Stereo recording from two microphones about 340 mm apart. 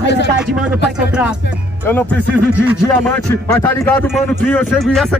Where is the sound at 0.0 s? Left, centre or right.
Left.